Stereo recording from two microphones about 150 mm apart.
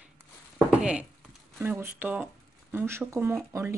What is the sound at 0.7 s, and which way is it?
Speech, 5° right (ahead or behind).